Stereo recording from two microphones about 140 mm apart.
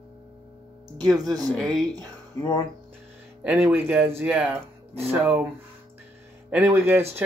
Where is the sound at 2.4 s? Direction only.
20° left (ahead or behind).